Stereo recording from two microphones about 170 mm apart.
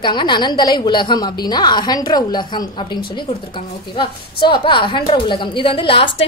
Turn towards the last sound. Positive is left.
turn(degrees=30)  # may be behind; listen again after turning